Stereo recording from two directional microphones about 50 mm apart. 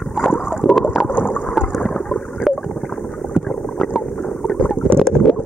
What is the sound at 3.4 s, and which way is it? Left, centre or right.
Boat, centre.